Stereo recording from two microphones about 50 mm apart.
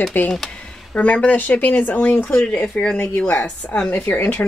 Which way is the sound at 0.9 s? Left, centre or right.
Left.